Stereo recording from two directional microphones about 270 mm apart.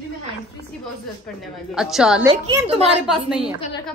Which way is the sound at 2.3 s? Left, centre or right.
Right.